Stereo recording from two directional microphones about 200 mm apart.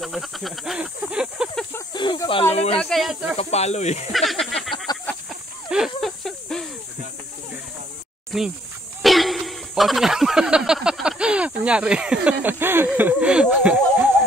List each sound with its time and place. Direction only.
0.0 s speech: centre (ahead or behind)
2.0 s speech: 25° left (ahead or behind)
2.8 s speech: centre (ahead or behind)
3.3 s speech: 30° left (ahead or behind)
4.1 s a sound: centre (ahead or behind)
5.7 s snake: centre (ahead or behind)
8.3 s speech: centre (ahead or behind)
9.0 s a sound: centre (ahead or behind)